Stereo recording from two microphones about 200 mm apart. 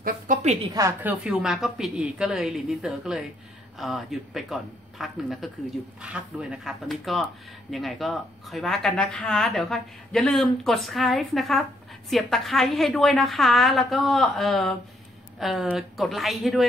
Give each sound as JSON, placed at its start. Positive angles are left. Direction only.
{"t": 0.0, "sound": "a woman's voice", "side_deg": -35}
{"t": 0.7, "sound": "a woman's voice", "side_deg": -15}
{"t": 1.2, "sound": "a woman's voice", "side_deg": -5}